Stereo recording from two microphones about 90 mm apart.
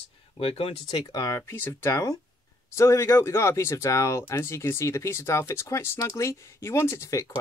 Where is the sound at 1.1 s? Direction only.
45° left (ahead or behind).